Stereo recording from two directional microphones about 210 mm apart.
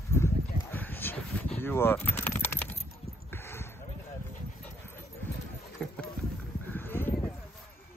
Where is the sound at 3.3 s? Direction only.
10° left (ahead or behind).